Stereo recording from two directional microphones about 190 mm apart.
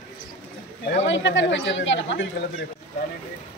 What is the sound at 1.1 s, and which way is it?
Speech, 70° left (ahead or behind).